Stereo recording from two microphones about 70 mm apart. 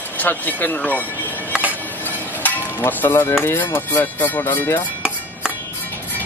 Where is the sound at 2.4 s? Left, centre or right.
Left.